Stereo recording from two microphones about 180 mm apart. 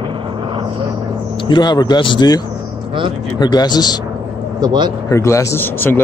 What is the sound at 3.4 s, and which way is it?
Speech, 25° left (ahead or behind).